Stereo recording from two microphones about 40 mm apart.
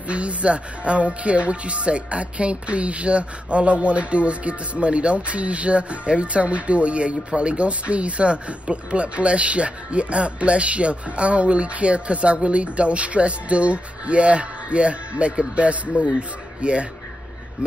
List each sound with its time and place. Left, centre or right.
0.1 s speech: right